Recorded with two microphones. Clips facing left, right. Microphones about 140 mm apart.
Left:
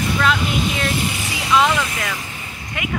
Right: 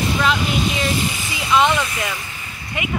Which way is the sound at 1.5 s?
Centre (ahead or behind).